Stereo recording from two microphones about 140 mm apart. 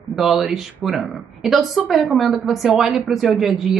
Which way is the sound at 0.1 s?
Centre (ahead or behind).